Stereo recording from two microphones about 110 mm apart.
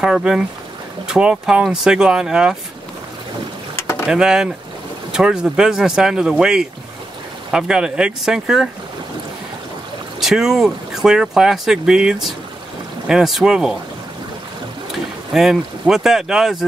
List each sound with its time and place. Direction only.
0.0 s speech: 5° right (ahead or behind)
3.8 s a sound: 25° left (ahead or behind)
4.1 s speech: 5° right (ahead or behind)
10.2 s speech: 5° right (ahead or behind)
15.3 s speech: 5° right (ahead or behind)